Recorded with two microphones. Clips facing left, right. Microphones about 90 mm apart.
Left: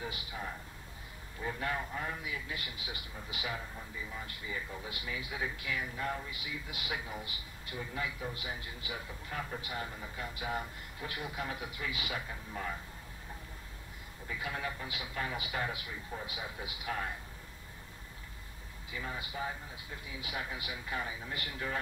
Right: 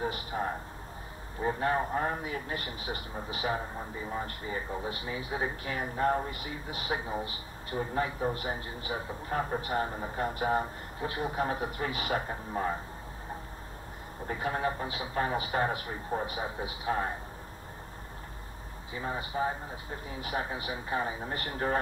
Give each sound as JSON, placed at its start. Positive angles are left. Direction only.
{"t": 0.0, "sound": "a man's voice", "side_deg": -45}
{"t": 14.2, "sound": "a man's voice", "side_deg": -40}
{"t": 18.9, "sound": "a man's voice", "side_deg": -35}